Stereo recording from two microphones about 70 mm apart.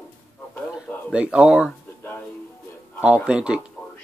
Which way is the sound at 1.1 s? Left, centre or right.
Centre.